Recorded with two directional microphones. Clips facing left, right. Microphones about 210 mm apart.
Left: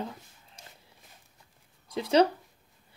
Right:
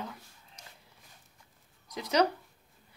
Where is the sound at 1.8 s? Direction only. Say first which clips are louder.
Left 4 dB; 30° left (ahead or behind).